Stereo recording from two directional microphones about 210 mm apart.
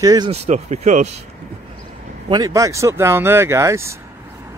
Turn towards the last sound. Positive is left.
turn(degrees=-15)  # may be behind; listen again after turning